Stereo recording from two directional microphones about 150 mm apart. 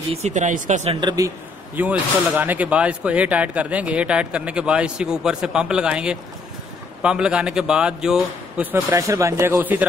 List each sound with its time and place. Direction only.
0.1 s speech: 50° right (ahead or behind)
1.0 s speech: 25° right (ahead or behind)
1.8 s speech: 10° right (ahead or behind)
8.9 s speech: 20° right (ahead or behind)